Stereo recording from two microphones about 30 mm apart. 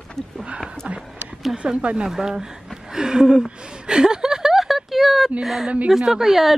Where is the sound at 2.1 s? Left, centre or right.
Centre.